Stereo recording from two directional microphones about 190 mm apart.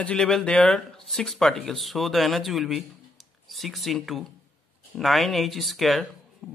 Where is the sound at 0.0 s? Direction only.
5° left (ahead or behind).